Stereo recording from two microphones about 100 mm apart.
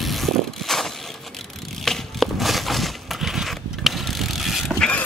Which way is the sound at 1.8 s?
5° left (ahead or behind).